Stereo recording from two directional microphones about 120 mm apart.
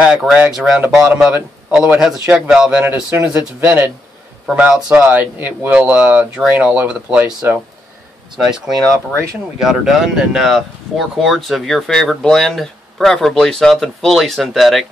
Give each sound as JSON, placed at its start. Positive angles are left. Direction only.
{"t": 0.0, "sound": "speech", "side_deg": -5}
{"t": 8.4, "sound": "speech", "side_deg": -5}